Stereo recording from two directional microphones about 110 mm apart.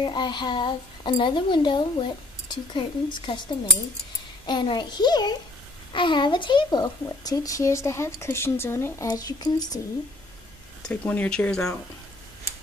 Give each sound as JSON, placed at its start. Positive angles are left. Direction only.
{"t": 0.0, "sound": "a child's voice", "side_deg": 45}
{"t": 4.5, "sound": "speech", "side_deg": 45}
{"t": 10.9, "sound": "speech", "side_deg": 10}